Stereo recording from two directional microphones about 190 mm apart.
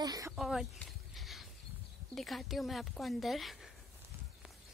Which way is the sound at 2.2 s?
Centre (ahead or behind).